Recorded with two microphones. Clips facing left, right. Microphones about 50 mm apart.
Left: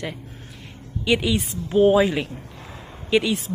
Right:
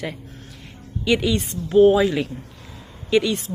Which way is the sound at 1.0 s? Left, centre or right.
Centre.